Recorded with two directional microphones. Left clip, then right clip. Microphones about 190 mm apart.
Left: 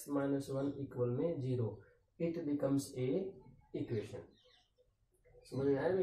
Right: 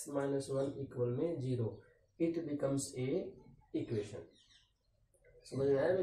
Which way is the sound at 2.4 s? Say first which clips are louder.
Left 1 dB; 15° right (ahead or behind).